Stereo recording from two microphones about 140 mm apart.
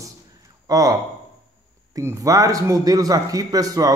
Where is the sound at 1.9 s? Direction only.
25° right (ahead or behind).